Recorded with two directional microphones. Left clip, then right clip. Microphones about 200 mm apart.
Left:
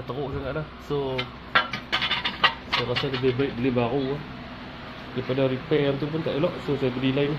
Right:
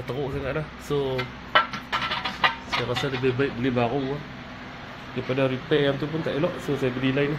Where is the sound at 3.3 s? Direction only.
5° right (ahead or behind).